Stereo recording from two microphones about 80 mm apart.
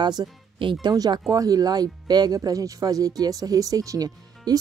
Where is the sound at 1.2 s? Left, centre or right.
Right.